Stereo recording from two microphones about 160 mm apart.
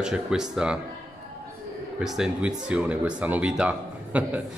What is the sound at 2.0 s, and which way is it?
Speech, 5° right (ahead or behind).